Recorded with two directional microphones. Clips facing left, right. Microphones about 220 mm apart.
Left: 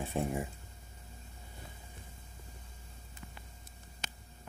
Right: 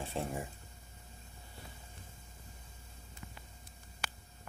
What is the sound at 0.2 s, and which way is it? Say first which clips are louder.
Speech: left 4 dB; 15° left (ahead or behind).